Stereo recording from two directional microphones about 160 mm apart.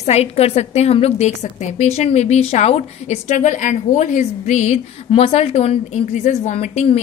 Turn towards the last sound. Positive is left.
turn(degrees=45)  # may be behind; listen again after turning